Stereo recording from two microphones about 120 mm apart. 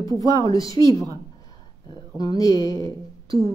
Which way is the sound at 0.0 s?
30° left (ahead or behind).